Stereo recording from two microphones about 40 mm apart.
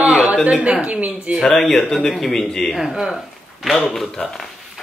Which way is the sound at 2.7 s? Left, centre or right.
Centre.